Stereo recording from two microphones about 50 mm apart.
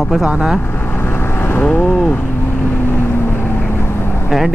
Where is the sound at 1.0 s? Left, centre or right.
Left.